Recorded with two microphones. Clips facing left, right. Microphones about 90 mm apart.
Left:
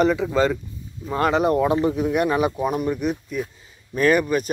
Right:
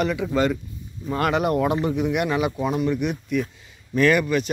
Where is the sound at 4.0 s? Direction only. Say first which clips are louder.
Even; 35° left (ahead or behind).